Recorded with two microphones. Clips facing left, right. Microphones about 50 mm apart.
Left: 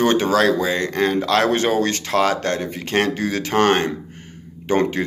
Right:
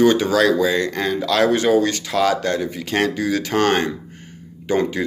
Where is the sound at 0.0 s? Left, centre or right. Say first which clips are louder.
Right 1 dB; left.